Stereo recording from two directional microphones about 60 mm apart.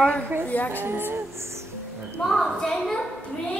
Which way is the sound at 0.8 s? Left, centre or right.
Right.